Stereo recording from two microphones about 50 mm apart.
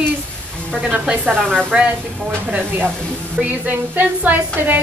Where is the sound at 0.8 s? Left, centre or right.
Centre.